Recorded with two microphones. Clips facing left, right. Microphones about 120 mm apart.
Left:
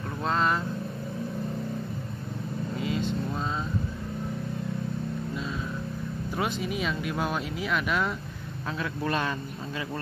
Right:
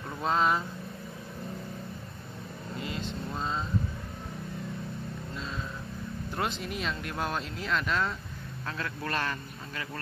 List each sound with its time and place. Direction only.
0.2 s speech: 5° right (ahead or behind)
2.8 s vehicle: centre (ahead or behind)
6.3 s speech: 5° left (ahead or behind)